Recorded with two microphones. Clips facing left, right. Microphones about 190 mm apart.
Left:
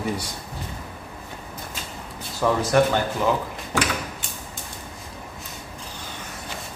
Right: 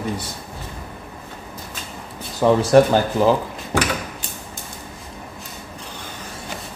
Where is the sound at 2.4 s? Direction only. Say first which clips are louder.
Right 6 dB; 35° right (ahead or behind).